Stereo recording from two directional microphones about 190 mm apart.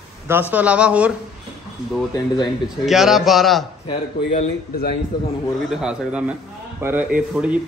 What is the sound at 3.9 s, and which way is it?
Speech, 25° left (ahead or behind).